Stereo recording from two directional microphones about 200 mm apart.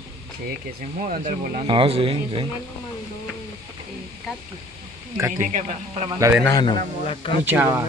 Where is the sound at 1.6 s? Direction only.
25° right (ahead or behind).